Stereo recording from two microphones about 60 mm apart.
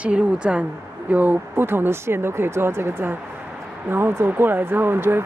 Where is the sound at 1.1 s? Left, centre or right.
Right.